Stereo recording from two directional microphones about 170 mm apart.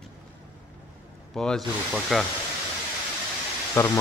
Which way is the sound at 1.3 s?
5° left (ahead or behind).